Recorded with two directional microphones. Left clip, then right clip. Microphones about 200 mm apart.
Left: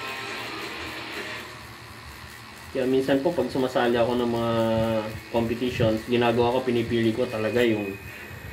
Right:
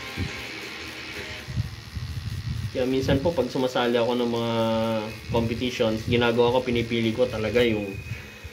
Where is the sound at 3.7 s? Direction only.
20° right (ahead or behind).